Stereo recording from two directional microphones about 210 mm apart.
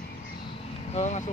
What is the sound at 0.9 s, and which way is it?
Speech, 30° left (ahead or behind).